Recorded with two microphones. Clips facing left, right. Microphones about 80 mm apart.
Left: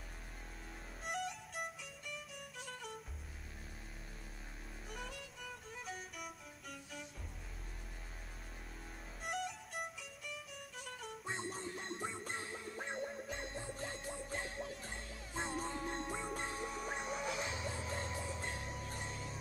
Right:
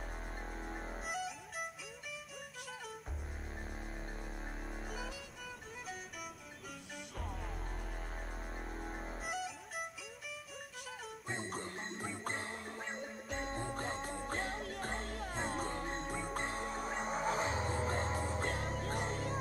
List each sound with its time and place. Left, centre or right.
1.0 s violin: centre
4.9 s music: centre
9.2 s music: centre
11.1 s music: centre
11.5 s music: right
16.1 s music: centre
16.3 s music: right